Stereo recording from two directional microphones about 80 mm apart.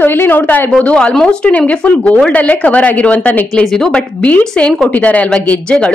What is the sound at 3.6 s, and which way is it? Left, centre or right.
A woman's voice, centre.